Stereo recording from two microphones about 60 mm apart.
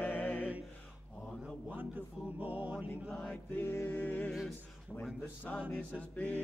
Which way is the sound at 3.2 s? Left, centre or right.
Left.